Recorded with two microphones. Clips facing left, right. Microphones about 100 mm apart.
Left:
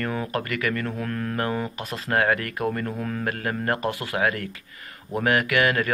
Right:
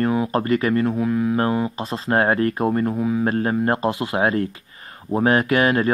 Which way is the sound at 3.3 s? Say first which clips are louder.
Right 6 dB; 30° right (ahead or behind).